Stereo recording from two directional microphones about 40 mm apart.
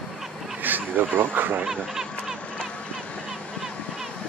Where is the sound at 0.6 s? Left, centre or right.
Right.